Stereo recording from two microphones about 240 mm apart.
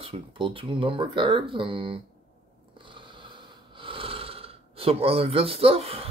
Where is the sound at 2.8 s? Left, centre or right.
Centre.